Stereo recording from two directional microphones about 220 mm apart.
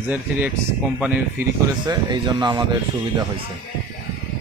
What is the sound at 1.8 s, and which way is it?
Speech, 20° right (ahead or behind).